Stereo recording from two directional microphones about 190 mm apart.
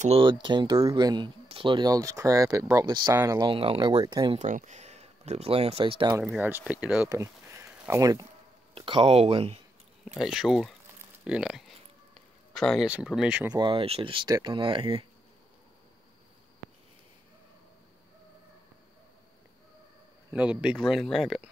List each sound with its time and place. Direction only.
0.0 s speech: 30° right (ahead or behind)
4.4 s speech: 40° right (ahead or behind)
6.1 s speech: 10° right (ahead or behind)
8.7 s speech: 30° right (ahead or behind)
10.0 s speech: centre (ahead or behind)
11.2 s a sound: 5° right (ahead or behind)
13.5 s speech: 25° right (ahead or behind)
20.3 s speech: 5° right (ahead or behind)